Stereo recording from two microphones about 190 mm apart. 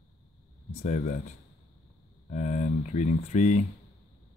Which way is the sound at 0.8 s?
40° left (ahead or behind).